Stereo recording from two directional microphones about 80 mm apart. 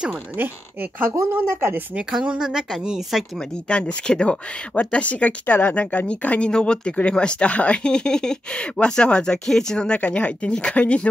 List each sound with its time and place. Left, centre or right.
0.1 s speech: right
2.0 s speech: centre
3.3 s speech: centre